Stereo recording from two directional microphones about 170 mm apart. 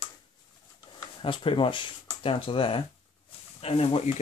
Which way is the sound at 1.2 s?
30° left (ahead or behind).